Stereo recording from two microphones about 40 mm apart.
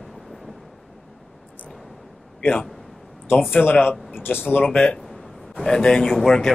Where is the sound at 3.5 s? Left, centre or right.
Left.